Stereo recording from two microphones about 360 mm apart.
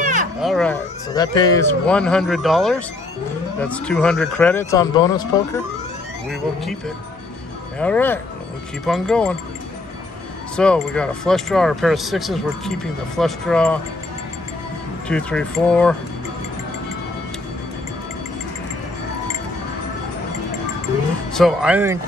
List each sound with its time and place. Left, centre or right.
0.0 s a sound: right
0.4 s speech: centre
7.8 s speech: centre
10.5 s speech: centre
15.0 s speech: centre
21.3 s speech: centre